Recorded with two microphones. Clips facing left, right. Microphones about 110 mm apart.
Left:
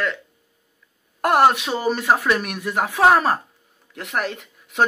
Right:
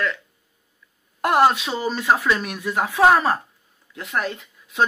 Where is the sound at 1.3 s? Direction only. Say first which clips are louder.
Left 1 dB; 55° left (ahead or behind).